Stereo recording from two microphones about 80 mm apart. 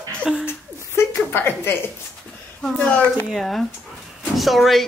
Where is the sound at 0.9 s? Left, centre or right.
Left.